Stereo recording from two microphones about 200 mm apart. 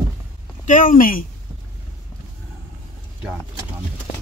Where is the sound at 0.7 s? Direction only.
40° left (ahead or behind).